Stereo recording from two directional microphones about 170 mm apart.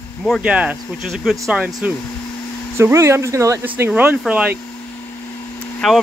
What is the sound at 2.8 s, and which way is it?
Speech, 15° right (ahead or behind).